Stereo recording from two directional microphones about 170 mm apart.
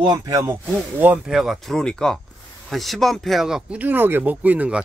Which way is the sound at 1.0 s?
5° right (ahead or behind).